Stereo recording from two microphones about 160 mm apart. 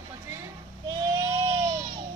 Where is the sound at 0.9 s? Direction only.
20° right (ahead or behind).